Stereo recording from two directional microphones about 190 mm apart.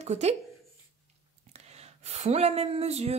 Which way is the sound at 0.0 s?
35° right (ahead or behind).